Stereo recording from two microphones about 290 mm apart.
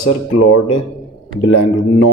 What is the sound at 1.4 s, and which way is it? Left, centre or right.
Speech, left.